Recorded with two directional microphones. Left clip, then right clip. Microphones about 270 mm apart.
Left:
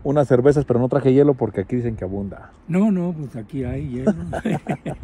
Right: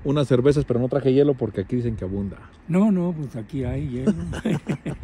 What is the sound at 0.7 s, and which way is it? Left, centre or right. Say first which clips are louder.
Speech: left 3 dB; centre.